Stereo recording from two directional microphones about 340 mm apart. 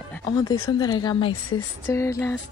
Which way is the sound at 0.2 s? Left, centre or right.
Centre.